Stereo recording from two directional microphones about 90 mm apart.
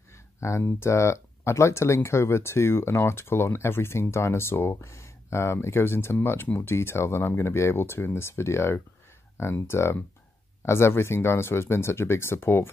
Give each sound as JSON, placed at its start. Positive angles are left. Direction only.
{"t": 0.4, "sound": "speech", "side_deg": 35}